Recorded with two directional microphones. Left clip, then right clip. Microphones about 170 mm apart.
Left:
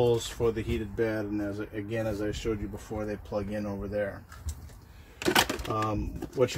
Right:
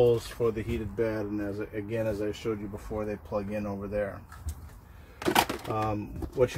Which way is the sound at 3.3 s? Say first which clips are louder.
Even; 20° left (ahead or behind).